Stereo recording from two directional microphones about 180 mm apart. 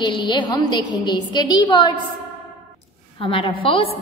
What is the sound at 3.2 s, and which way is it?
Speech, 30° left (ahead or behind).